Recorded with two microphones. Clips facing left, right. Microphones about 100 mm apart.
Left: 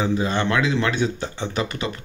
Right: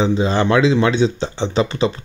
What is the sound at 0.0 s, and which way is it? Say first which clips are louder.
A man's voice: right 5 dB; 25° right (ahead or behind).